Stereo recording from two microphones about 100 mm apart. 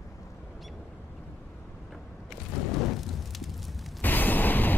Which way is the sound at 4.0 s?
20° left (ahead or behind).